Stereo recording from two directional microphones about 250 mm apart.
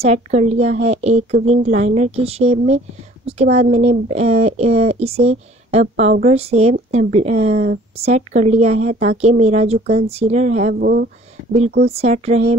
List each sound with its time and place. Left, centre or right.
0.0 s speech: right
11.9 s speech: right